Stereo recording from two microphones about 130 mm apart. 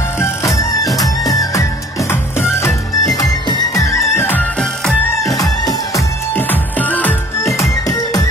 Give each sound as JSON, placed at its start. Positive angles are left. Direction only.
{"t": 0.2, "sound": "music", "side_deg": 25}
{"t": 5.2, "sound": "music", "side_deg": 25}
{"t": 6.3, "sound": "music", "side_deg": 15}